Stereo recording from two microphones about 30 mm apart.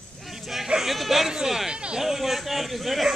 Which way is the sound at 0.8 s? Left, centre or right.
Centre.